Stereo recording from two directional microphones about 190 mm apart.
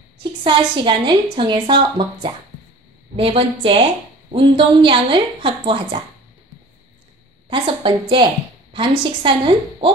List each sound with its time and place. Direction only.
0.2 s a woman's voice: 25° right (ahead or behind)
7.4 s a woman's voice: 30° right (ahead or behind)